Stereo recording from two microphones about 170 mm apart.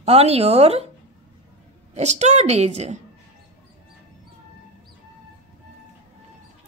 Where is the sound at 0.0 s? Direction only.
35° right (ahead or behind).